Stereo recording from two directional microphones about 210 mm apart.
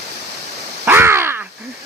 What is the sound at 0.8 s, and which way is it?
Crow, 10° right (ahead or behind).